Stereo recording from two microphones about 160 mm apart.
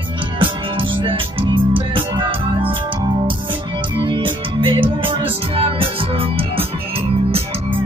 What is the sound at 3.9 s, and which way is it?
Music, 30° right (ahead or behind).